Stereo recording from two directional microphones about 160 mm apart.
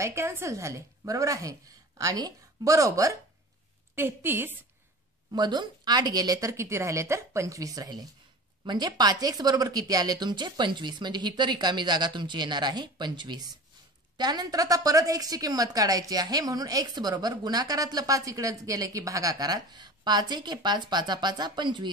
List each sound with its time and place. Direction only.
0.0 s a woman's voice: 15° right (ahead or behind)
5.3 s a woman's voice: 25° right (ahead or behind)